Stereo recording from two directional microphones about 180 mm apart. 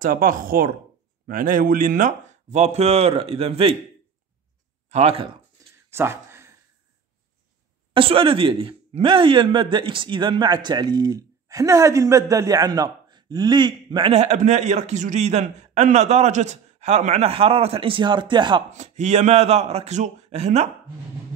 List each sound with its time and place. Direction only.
0.0 s speech: 50° right (ahead or behind); by 3.7 s 35° right (ahead or behind)
4.8 s speech: 35° right (ahead or behind)
5.9 s a sound: 15° right (ahead or behind)
7.9 s a man's voice: 30° right (ahead or behind)
18.7 s speech: 40° right (ahead or behind)